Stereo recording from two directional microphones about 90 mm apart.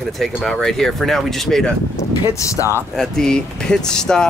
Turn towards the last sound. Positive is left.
turn(degrees=5)  # may be behind; listen again after turning